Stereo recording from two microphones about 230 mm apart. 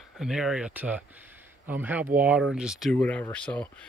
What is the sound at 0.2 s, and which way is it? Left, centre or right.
Speech, centre.